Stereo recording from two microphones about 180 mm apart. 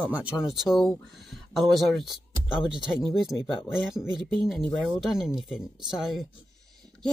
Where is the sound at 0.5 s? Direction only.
Centre (ahead or behind).